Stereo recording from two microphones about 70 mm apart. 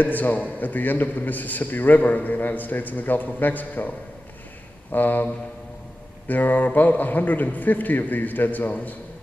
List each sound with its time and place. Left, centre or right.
0.0 s a man's voice: left
4.9 s a man's voice: left